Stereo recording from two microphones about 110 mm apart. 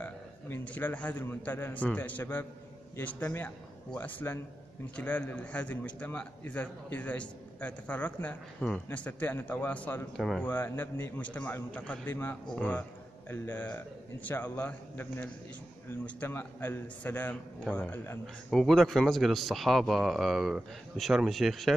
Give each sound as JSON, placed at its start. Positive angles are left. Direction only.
{"t": 0.0, "sound": "a man's voice", "side_deg": 15}
{"t": 10.1, "sound": "speech", "side_deg": 0}
{"t": 10.4, "sound": "a man's voice", "side_deg": 20}
{"t": 18.2, "sound": "speech", "side_deg": 5}